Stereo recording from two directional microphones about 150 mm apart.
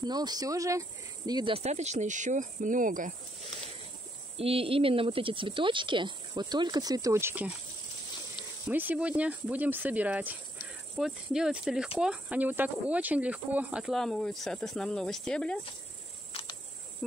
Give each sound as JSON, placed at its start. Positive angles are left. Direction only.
{"t": 0.0, "sound": "speech", "side_deg": -25}
{"t": 1.6, "sound": "speech", "side_deg": -50}
{"t": 4.4, "sound": "speech", "side_deg": -40}
{"t": 8.6, "sound": "speech", "side_deg": -10}
{"t": 16.3, "sound": "insect", "side_deg": 40}